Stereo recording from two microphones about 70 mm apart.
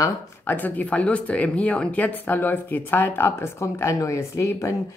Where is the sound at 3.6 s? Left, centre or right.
Left.